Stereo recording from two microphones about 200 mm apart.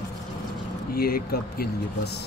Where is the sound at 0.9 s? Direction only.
50° left (ahead or behind).